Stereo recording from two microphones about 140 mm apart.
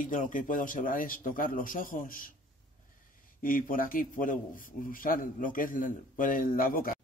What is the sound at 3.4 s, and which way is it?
A man's voice, 80° left.